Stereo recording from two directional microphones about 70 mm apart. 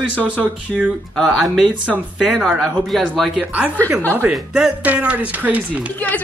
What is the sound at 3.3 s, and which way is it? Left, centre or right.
Speech, centre.